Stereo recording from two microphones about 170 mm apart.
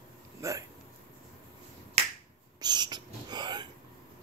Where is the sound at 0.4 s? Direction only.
20° right (ahead or behind).